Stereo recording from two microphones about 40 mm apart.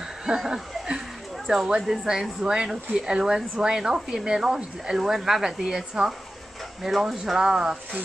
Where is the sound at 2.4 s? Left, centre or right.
Centre.